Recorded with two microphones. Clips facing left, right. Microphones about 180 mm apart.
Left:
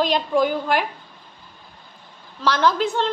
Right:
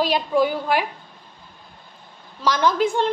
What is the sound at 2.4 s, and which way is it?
Speech, 10° right (ahead or behind).